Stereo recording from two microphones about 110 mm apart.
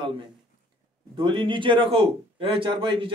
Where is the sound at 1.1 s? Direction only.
50° right (ahead or behind).